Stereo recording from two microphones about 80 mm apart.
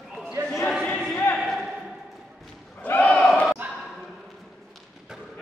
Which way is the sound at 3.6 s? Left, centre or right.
Right.